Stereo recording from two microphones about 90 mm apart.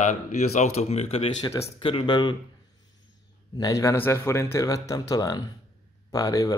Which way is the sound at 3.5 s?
45° left (ahead or behind).